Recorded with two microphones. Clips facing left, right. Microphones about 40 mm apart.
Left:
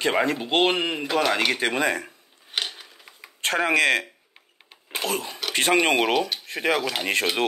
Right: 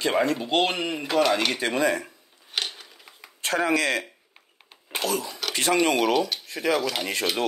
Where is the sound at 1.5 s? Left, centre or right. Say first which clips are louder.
Even; left.